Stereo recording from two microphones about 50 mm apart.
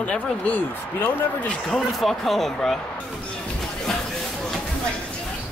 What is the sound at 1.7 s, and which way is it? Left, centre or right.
Speech, centre.